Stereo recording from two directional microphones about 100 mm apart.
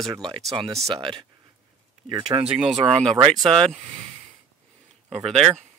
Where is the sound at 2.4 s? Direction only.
5° right (ahead or behind).